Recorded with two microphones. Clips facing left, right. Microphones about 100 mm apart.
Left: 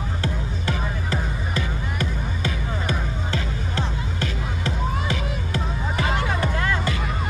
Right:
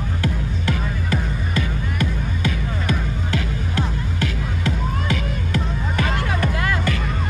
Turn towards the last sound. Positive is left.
turn(degrees=30)  # may be behind; listen again after turning